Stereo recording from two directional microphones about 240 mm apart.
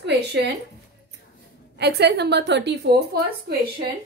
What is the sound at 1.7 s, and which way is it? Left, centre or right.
A woman's voice, right.